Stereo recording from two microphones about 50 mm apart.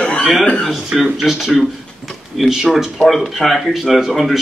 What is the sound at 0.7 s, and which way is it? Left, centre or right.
Speech, centre.